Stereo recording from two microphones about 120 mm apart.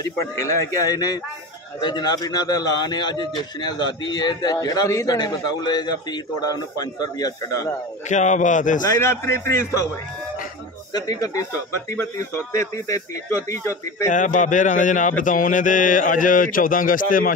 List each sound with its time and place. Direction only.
0.0 s a man's voice: 30° left (ahead or behind)
8.1 s speech: 85° left
8.8 s speech: 20° left (ahead or behind)
10.9 s speech: 35° left (ahead or behind)
14.1 s speech: 90° left